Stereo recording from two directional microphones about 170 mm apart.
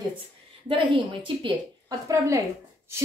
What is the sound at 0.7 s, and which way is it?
A woman's voice, 30° right (ahead or behind).